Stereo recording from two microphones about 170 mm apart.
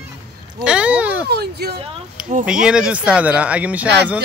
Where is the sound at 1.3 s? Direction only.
70° right (ahead or behind).